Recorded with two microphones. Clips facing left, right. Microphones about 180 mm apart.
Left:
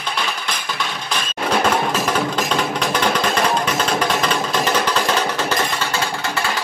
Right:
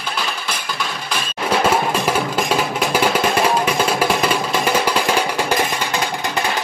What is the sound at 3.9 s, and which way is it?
Music, 10° right (ahead or behind).